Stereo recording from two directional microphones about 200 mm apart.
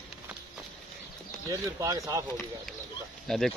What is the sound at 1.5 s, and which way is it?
Speech, 15° right (ahead or behind).